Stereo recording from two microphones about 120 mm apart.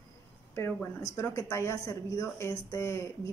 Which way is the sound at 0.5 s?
15° left (ahead or behind).